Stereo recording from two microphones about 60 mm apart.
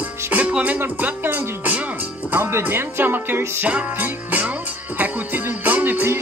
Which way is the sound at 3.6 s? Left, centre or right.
Right.